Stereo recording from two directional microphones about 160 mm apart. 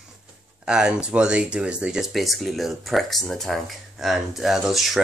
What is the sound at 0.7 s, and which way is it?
Speech, 5° right (ahead or behind).